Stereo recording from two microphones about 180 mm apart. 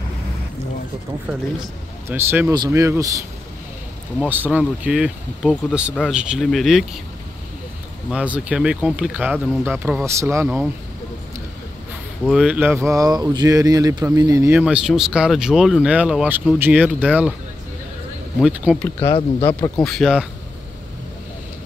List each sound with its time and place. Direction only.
2.0 s speech: 15° right (ahead or behind)
4.3 s speech: 10° right (ahead or behind)
8.1 s speech: 5° right (ahead or behind)
12.3 s speech: 5° right (ahead or behind)
18.4 s speech: 5° right (ahead or behind)
19.1 s speech: 30° left (ahead or behind)
19.8 s speech: centre (ahead or behind)